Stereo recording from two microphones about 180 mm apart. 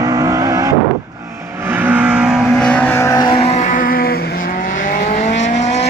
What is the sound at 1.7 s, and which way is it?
Vehicle, 10° right (ahead or behind).